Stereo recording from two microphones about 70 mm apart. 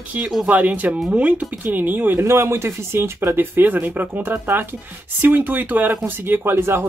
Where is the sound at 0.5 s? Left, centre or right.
Right.